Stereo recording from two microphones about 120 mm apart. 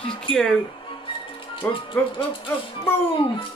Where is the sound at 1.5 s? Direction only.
45° left (ahead or behind).